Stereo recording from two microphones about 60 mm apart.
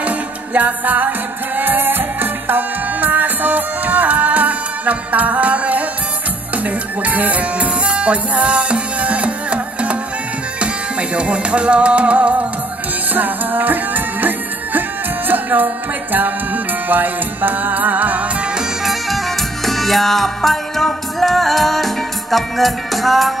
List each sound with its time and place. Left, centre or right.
0.6 s music: right
18.9 s music: centre